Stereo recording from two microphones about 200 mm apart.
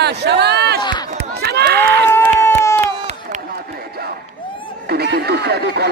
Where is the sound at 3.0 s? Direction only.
35° right (ahead or behind).